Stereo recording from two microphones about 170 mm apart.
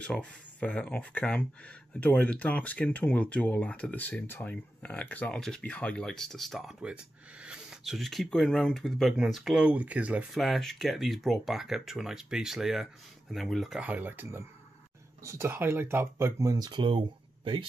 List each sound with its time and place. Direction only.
0.0 s speech: 5° left (ahead or behind); by 17.0 s 30° right (ahead or behind)